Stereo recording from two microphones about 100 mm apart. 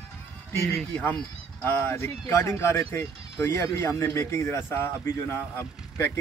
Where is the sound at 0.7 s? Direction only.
15° left (ahead or behind).